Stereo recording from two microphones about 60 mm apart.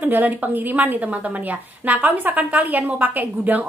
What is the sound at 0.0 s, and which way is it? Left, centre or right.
A woman's voice, right.